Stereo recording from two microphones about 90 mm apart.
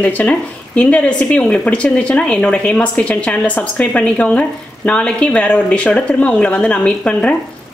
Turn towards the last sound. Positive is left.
turn(degrees=15)  # may be behind; listen again after turning